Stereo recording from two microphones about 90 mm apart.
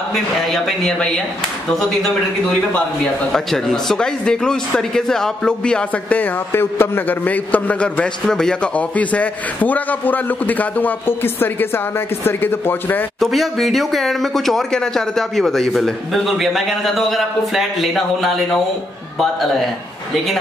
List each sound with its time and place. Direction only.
0.1 s speech: 5° left (ahead or behind)
3.3 s a man's voice: 5° left (ahead or behind); by 13.0 s 25° left (ahead or behind)
13.2 s speech: centre (ahead or behind)